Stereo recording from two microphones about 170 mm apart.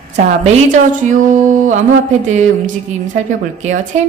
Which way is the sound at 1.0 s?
50° right (ahead or behind).